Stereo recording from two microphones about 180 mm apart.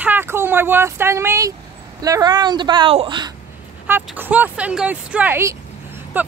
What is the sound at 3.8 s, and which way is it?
Speech, 10° right (ahead or behind).